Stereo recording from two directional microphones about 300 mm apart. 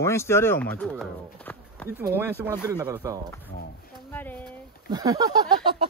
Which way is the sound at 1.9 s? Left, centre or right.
Centre.